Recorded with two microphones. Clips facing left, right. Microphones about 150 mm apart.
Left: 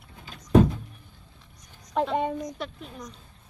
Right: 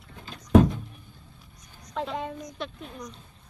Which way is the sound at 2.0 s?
60° left (ahead or behind).